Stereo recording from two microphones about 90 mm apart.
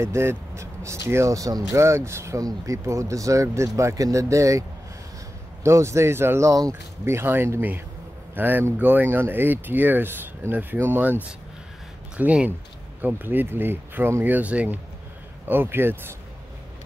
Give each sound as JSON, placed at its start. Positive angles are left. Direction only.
{"t": 0.0, "sound": "speech", "side_deg": -30}
{"t": 12.2, "sound": "speech", "side_deg": -15}